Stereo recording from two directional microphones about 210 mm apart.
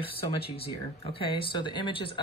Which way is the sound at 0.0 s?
25° left (ahead or behind).